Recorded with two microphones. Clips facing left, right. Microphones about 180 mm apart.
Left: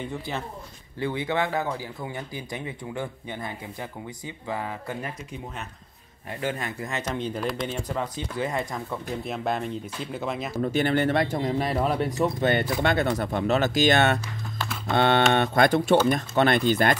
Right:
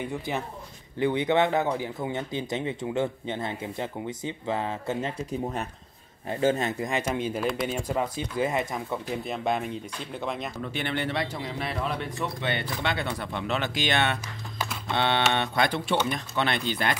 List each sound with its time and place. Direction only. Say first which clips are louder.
0.9 s speech: right 4 dB; 20° right (ahead or behind)
6.3 s speech: right 6 dB; 25° right (ahead or behind)
9.2 s speech: left 1 dB; centre (ahead or behind)
10.5 s speech: left 8 dB; 40° left (ahead or behind)